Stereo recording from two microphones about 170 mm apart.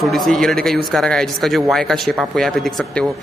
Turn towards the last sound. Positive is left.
turn(degrees=0)  # may be behind; listen again after turning